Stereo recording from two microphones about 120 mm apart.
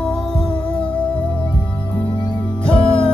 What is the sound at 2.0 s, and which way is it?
Music, 40° left (ahead or behind).